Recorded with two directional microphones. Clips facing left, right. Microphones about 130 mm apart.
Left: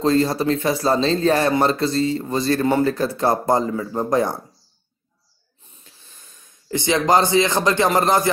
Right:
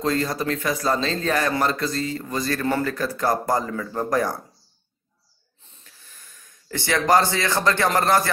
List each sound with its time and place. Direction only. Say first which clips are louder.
0.0 s speech: left 6 dB; 30° left (ahead or behind)
5.9 s speech: even; 25° left (ahead or behind)